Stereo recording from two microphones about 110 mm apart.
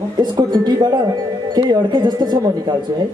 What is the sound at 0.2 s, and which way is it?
Speech, 40° right (ahead or behind).